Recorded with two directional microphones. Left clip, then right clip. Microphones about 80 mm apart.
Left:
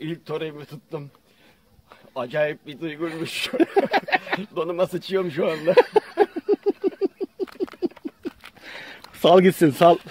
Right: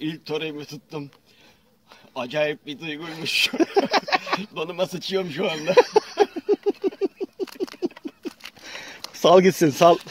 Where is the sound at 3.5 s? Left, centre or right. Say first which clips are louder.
Left 1 dB; centre.